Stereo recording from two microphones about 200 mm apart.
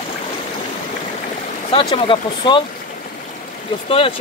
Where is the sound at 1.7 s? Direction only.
25° left (ahead or behind).